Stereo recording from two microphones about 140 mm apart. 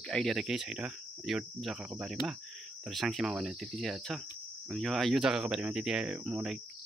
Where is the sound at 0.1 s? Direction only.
Centre (ahead or behind).